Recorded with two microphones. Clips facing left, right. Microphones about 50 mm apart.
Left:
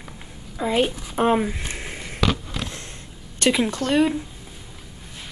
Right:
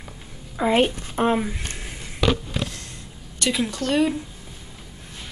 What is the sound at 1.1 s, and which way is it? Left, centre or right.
Speech, centre.